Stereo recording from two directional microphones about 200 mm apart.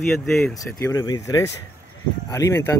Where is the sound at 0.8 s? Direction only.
15° left (ahead or behind).